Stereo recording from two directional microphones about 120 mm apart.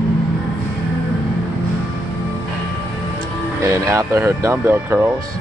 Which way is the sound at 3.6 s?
25° right (ahead or behind).